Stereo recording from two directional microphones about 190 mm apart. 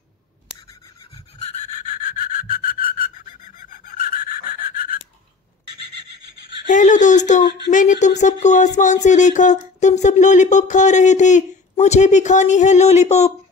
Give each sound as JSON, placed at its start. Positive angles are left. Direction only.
{"t": 1.5, "sound": "sawing", "side_deg": 35}
{"t": 6.7, "sound": "speech", "side_deg": 40}